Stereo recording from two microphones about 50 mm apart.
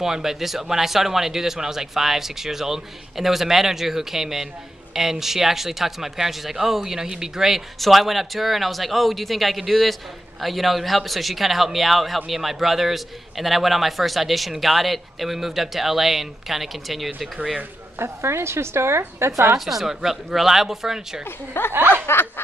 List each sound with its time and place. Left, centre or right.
0.0 s speech: centre
17.9 s a woman's voice: right
19.6 s speech: centre
21.7 s speech: right
22.0 s snicker: left